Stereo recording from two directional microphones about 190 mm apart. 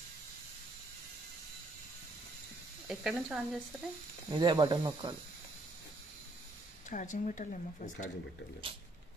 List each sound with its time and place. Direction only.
2.9 s speech: 5° right (ahead or behind)
4.3 s speech: 25° right (ahead or behind)
6.9 s speech: 40° left (ahead or behind)